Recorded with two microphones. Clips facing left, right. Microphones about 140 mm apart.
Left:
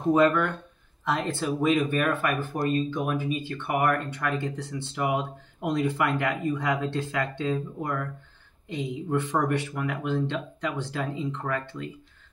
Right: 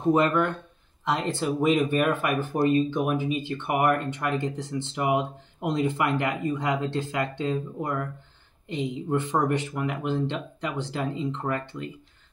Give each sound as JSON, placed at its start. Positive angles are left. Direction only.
{"t": 0.1, "sound": "speech", "side_deg": -20}